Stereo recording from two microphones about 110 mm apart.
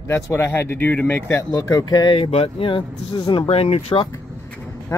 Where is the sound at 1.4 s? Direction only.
35° left (ahead or behind).